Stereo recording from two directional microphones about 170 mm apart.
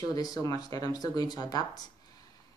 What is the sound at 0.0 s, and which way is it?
A woman's voice, 20° left (ahead or behind).